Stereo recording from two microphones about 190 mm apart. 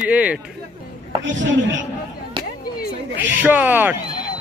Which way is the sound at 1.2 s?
75° right (ahead or behind).